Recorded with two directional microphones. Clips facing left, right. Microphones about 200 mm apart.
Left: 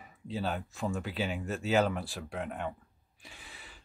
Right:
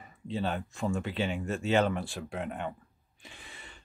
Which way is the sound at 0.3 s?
5° left (ahead or behind).